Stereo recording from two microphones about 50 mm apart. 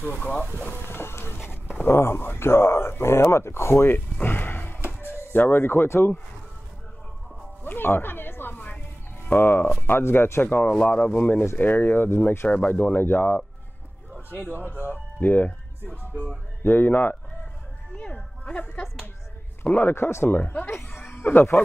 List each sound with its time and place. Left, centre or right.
0.0 s speech: left
0.7 s a sound: left
2.0 s speech: left
7.6 s a sound: left
9.3 s speech: left
10.6 s speech: left
11.5 s speech: left
12.6 s speech: left
15.1 s speech: left
17.9 s speech: left
19.6 s speech: left
20.0 s speech: left
20.2 s speech: left